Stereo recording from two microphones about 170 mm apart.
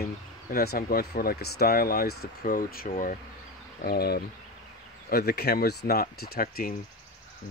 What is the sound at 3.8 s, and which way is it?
Speech, 65° left (ahead or behind).